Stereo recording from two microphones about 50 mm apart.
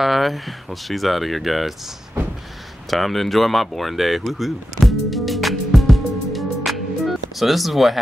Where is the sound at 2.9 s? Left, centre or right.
Centre.